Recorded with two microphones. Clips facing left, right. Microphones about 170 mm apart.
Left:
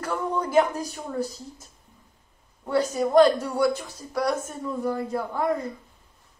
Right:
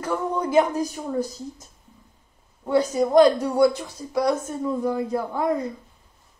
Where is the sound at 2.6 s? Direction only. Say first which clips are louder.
Right 3 dB; 10° right (ahead or behind).